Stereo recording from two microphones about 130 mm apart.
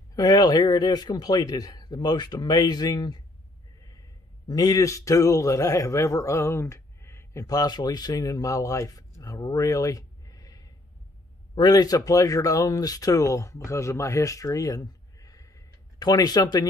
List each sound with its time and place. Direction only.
0.1 s a man's voice: 30° left (ahead or behind)
4.5 s a man's voice: 30° left (ahead or behind)